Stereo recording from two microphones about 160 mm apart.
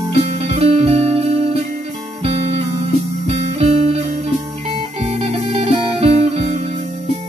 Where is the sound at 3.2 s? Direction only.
40° right (ahead or behind).